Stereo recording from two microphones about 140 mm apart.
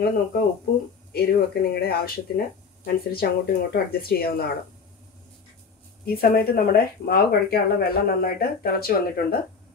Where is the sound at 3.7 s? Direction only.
90° left.